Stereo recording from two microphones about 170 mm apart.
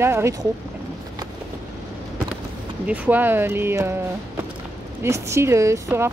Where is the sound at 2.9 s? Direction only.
10° right (ahead or behind).